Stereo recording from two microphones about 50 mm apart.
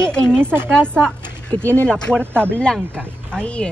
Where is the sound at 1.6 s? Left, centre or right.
Right.